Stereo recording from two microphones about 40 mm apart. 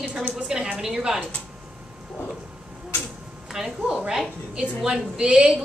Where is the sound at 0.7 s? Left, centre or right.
Centre.